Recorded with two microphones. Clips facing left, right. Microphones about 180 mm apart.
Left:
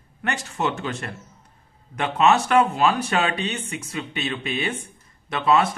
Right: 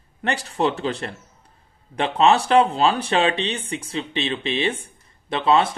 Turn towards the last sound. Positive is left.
turn(degrees=-30)  # may be behind; listen again after turning